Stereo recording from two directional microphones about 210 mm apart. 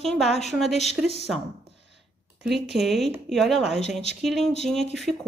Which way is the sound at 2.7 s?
Centre (ahead or behind).